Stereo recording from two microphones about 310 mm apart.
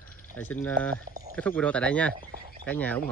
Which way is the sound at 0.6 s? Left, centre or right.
Centre.